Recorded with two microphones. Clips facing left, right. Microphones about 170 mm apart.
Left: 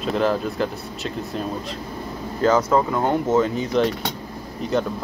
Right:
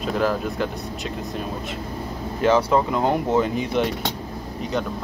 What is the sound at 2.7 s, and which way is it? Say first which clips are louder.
Speech: even; 15° right (ahead or behind).